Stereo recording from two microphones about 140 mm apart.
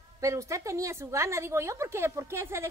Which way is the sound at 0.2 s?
20° right (ahead or behind).